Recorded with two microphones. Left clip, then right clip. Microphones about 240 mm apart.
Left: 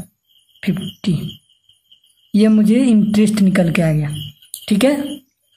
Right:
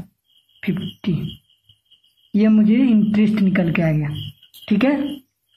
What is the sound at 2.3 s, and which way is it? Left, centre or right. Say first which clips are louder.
A woman's voice: left 3 dB; left.